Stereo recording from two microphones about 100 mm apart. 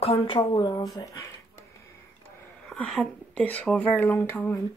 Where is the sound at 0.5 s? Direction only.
40° left (ahead or behind).